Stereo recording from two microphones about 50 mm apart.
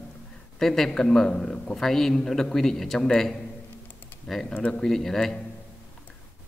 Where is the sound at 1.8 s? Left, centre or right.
Centre.